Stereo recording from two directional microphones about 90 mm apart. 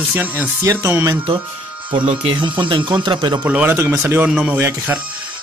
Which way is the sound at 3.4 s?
20° right (ahead or behind).